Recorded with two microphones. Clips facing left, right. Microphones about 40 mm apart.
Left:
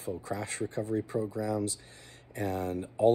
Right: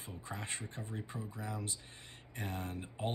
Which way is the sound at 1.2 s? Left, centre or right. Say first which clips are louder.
Left 12 dB; left.